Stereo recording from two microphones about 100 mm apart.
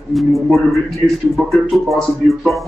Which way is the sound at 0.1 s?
Centre (ahead or behind).